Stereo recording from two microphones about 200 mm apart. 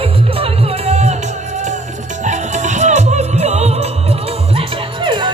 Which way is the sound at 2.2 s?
35° right (ahead or behind).